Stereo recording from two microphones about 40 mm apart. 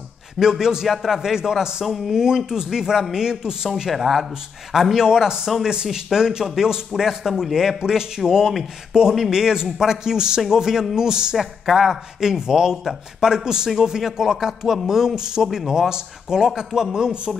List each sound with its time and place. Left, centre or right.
0.4 s speech: centre
0.8 s speech: centre
3.9 s speech: centre
11.3 s speech: centre